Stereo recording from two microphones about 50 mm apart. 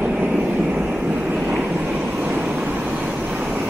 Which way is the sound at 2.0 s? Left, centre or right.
Right.